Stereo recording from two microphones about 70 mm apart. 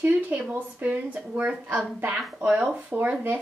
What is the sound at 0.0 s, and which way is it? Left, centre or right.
A woman's voice, right.